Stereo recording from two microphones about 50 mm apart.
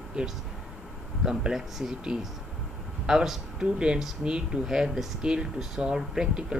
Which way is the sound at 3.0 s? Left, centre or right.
Centre.